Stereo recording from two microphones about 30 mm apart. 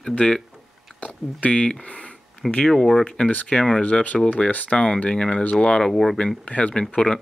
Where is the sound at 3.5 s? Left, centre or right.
Left.